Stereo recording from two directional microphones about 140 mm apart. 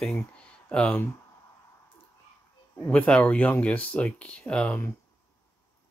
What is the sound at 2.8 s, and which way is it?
Speech, 10° left (ahead or behind).